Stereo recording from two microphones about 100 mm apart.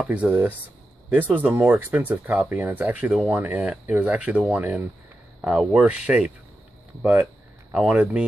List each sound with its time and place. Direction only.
0.1 s speech: 15° right (ahead or behind)